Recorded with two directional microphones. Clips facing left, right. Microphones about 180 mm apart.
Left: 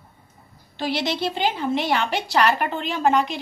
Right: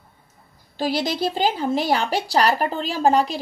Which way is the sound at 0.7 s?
40° right (ahead or behind).